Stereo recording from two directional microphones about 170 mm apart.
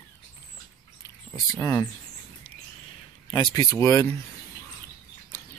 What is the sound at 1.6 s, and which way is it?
Speech, 20° left (ahead or behind).